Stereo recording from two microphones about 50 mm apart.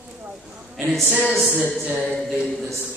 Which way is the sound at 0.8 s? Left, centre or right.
Centre.